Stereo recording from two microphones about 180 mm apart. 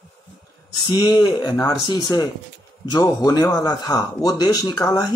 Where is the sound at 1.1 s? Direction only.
25° left (ahead or behind).